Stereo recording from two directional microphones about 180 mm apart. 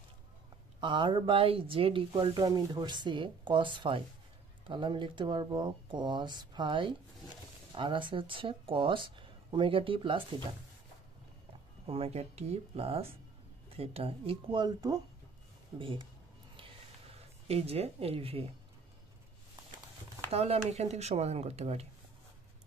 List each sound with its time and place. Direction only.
0.7 s speech: 25° right (ahead or behind)
11.8 s speech: 30° right (ahead or behind)
17.5 s speech: 35° right (ahead or behind)
20.2 s speech: 35° right (ahead or behind)